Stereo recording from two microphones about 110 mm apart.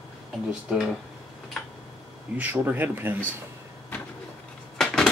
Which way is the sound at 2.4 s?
15° right (ahead or behind).